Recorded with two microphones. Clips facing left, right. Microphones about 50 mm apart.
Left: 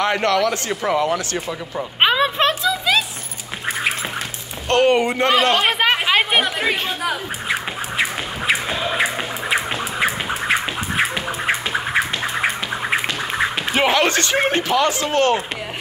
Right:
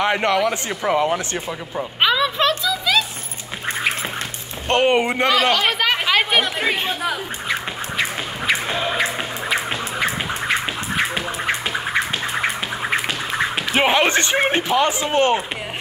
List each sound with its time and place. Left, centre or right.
0.0 s speech: centre
2.0 s a sound: left
4.6 s speech: right
5.5 s speech: left
6.0 s chatter: centre
7.1 s duck: centre
8.6 s music: centre
8.9 s music: centre
13.7 s speech: centre